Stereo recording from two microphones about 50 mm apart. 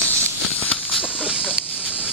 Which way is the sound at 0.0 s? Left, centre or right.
Left.